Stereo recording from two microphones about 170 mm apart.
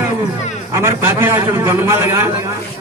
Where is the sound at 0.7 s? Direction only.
15° right (ahead or behind).